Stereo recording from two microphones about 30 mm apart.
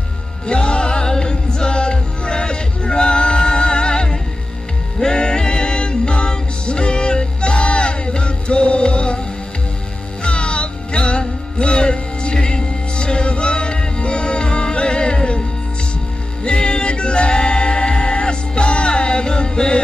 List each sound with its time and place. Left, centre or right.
0.5 s music: left
10.2 s music: left
16.4 s music: left